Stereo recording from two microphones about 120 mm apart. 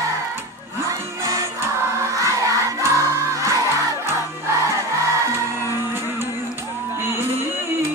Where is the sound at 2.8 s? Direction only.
25° right (ahead or behind).